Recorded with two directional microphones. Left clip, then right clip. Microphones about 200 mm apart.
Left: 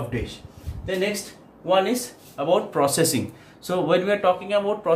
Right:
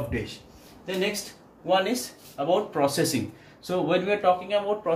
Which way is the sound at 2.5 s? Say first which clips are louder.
Left 3 dB; 20° left (ahead or behind).